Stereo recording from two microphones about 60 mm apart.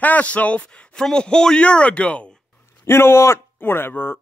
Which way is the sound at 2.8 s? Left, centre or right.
Left.